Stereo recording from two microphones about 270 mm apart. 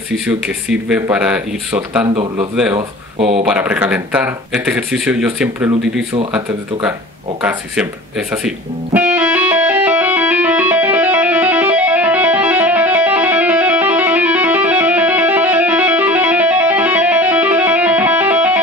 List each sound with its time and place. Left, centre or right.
0.3 s speech: centre
2.7 s speech: right
3.4 s speech: centre
8.3 s music: centre